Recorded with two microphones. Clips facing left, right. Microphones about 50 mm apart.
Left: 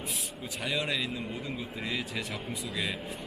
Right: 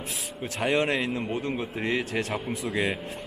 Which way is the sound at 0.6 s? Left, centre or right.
Right.